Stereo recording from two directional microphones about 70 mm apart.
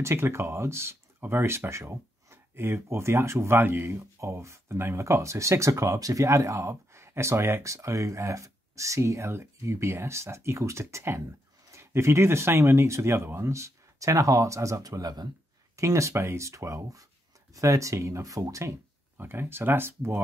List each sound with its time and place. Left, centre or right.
0.0 s speech: right
15.7 s speech: right
19.1 s speech: right